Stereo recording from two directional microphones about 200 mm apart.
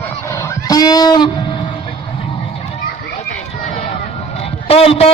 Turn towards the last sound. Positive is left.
turn(degrees=30)  # may be behind; listen again after turning